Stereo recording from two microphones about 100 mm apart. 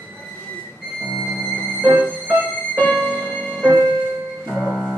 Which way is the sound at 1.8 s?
15° right (ahead or behind).